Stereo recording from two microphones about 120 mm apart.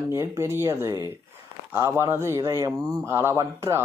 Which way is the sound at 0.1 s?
25° right (ahead or behind).